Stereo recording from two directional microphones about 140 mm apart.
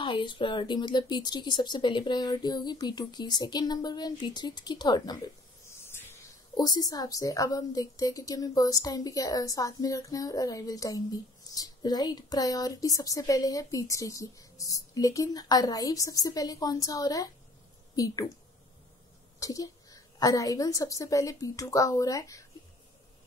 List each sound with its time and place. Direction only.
0.0 s speech: 35° left (ahead or behind)
6.5 s a woman's voice: 30° left (ahead or behind)
19.4 s a woman's voice: 25° left (ahead or behind)